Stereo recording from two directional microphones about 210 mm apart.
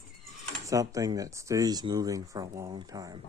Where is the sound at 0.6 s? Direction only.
15° right (ahead or behind).